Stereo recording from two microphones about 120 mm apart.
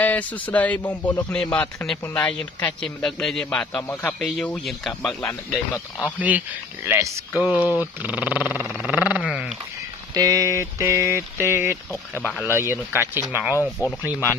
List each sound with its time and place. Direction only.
0.0 s a man's voice: 15° left (ahead or behind)
6.1 s speech: 15° right (ahead or behind)
8.8 s a sound: 10° right (ahead or behind)
9.3 s dog: 5° right (ahead or behind)
10.1 s a sound: 30° right (ahead or behind)
12.2 s a man's voice: 10° left (ahead or behind)
12.5 s speech: 20° right (ahead or behind)
13.6 s speech: 25° left (ahead or behind)